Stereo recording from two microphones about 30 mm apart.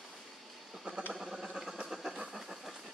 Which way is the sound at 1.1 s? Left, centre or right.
Centre.